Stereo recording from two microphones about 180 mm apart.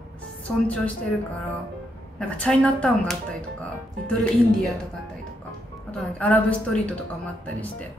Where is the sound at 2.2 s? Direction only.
5° left (ahead or behind).